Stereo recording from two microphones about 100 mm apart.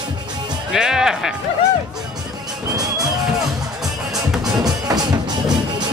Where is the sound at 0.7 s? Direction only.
5° right (ahead or behind).